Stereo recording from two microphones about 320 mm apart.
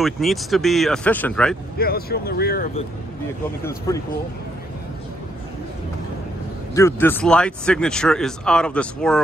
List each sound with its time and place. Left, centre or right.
0.0 s speech: centre
1.8 s speech: left
3.6 s speech: centre
6.7 s speech: centre